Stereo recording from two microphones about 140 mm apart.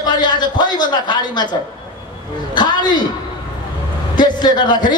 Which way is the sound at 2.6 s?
30° left (ahead or behind).